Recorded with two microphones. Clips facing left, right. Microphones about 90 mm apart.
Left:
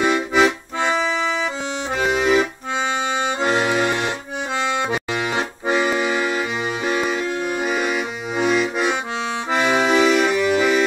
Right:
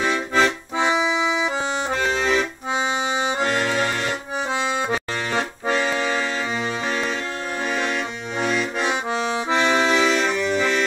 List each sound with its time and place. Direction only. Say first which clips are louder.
0.0 s accordion: left 3 dB; 5° left (ahead or behind)
0.7 s accordion: right 3 dB; 5° right (ahead or behind)
2.0 s accordion: left 5 dB; 5° left (ahead or behind)
3.3 s accordion: left 3 dB; 20° left (ahead or behind)
6.9 s music: left 6 dB; 10° left (ahead or behind)
7.6 s accordion: right 1 dB; 5° left (ahead or behind)